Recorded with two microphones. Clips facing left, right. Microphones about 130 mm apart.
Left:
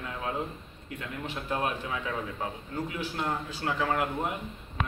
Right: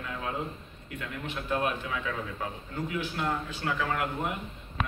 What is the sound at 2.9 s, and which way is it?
A man's voice, 35° left (ahead or behind).